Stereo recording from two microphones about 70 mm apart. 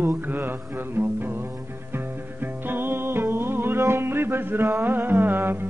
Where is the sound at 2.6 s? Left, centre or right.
Right.